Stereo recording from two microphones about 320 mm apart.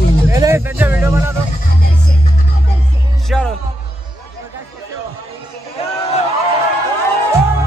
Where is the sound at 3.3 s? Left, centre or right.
Centre.